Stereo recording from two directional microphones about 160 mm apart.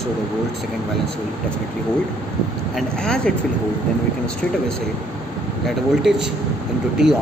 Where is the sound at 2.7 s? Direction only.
5° left (ahead or behind).